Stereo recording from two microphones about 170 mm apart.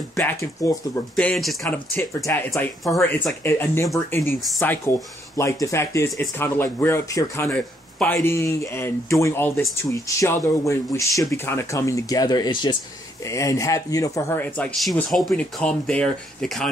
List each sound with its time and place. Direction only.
0.1 s speech: 15° left (ahead or behind)
1.1 s speech: 5° left (ahead or behind)
2.0 s speech: 15° left (ahead or behind)
14.8 s speech: centre (ahead or behind)